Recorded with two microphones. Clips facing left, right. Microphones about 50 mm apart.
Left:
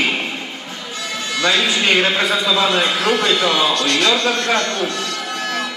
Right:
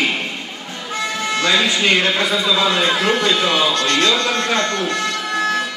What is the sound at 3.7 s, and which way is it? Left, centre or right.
Speech, right.